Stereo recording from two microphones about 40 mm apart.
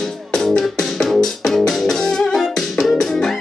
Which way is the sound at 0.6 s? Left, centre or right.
Centre.